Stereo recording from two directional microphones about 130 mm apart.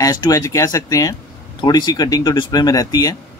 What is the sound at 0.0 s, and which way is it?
Speech, 30° left (ahead or behind).